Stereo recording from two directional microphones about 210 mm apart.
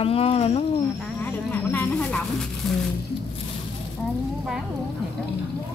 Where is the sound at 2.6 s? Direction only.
Centre (ahead or behind).